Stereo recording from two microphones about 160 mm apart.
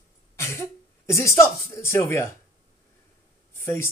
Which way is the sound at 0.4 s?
15° left (ahead or behind).